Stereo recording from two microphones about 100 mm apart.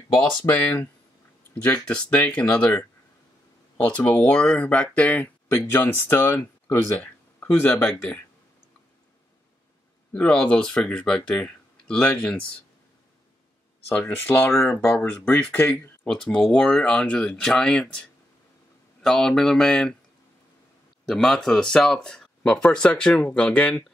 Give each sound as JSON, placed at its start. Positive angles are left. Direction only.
{"t": 1.5, "sound": "speech", "side_deg": 10}
{"t": 10.1, "sound": "speech", "side_deg": 10}
{"t": 13.8, "sound": "speech", "side_deg": 20}
{"t": 14.5, "sound": "speech", "side_deg": 5}
{"t": 15.6, "sound": "speech", "side_deg": 20}
{"t": 19.0, "sound": "speech", "side_deg": 5}
{"t": 21.0, "sound": "speech", "side_deg": 5}